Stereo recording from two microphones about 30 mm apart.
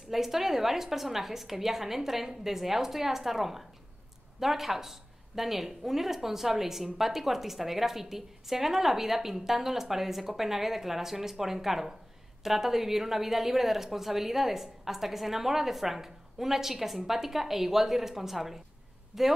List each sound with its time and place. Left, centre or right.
0.1 s a woman's voice: centre